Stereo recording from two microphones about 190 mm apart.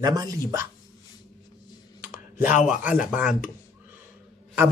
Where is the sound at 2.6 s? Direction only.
5° right (ahead or behind).